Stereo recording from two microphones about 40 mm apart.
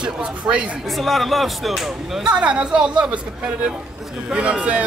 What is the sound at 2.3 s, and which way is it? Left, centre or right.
A man's voice, right.